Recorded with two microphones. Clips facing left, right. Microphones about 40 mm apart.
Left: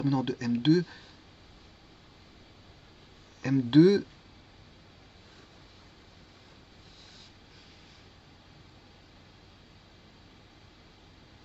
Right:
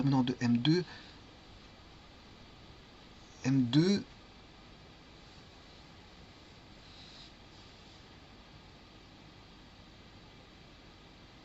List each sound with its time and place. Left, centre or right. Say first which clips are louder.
0.0 s speech: left 1 dB; centre
3.4 s speech: left 7 dB; centre